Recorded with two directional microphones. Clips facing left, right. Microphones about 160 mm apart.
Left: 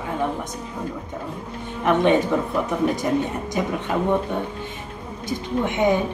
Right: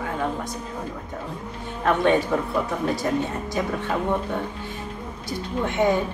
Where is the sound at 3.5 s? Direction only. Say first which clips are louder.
Left 2 dB; 20° left (ahead or behind).